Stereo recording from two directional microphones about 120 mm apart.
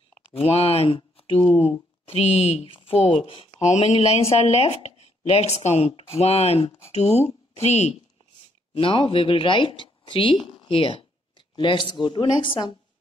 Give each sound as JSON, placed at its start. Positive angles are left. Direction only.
{"t": 0.4, "sound": "a woman's voice", "side_deg": 55}
{"t": 3.6, "sound": "a woman's voice", "side_deg": 70}
{"t": 8.7, "sound": "a woman's voice", "side_deg": 45}